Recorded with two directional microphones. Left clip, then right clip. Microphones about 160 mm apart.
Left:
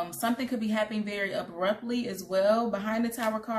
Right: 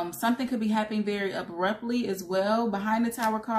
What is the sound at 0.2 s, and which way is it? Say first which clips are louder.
Speech: right 3 dB; 10° left (ahead or behind).